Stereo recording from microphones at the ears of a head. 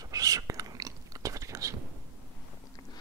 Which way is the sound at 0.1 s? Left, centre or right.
Right.